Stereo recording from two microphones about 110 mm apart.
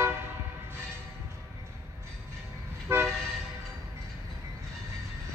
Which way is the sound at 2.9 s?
25° right (ahead or behind).